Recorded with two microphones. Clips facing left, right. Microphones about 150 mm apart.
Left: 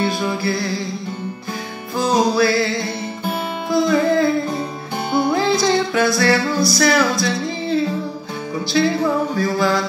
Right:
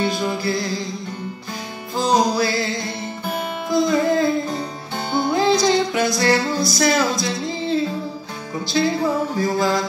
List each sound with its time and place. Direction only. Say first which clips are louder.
0.2 s music: left 1 dB; 20° right (ahead or behind)
2.0 s music: left 2 dB; 20° right (ahead or behind)
9.4 s mantra: right 1 dB; 20° right (ahead or behind)